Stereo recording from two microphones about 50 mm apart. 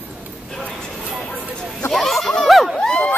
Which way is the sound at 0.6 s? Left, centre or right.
Centre.